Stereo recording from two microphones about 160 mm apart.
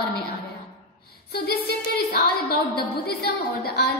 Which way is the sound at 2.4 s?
75° left (ahead or behind).